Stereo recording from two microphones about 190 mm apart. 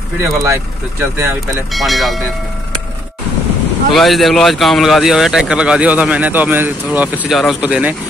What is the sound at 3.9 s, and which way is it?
Speech, centre (ahead or behind).